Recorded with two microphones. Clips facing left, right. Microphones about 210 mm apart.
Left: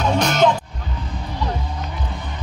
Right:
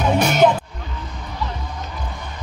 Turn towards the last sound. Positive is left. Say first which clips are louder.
# right 2 dB
turn(degrees=-10)  # may be behind; listen again after turning